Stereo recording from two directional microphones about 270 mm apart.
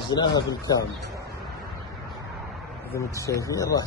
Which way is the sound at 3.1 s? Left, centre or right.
Centre.